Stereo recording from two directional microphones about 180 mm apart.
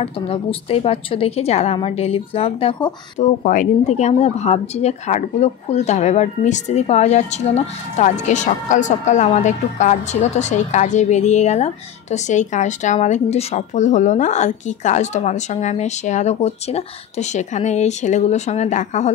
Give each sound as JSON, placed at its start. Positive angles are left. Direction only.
{"t": 0.0, "sound": "a woman's voice", "side_deg": 30}